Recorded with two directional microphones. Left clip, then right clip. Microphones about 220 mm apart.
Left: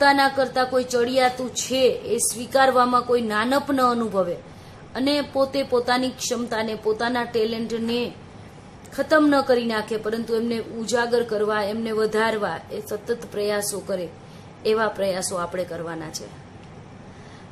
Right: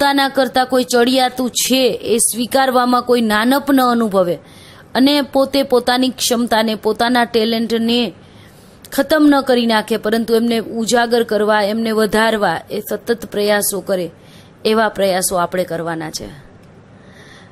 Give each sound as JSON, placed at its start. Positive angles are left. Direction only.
{"t": 0.0, "sound": "a woman's voice", "side_deg": -35}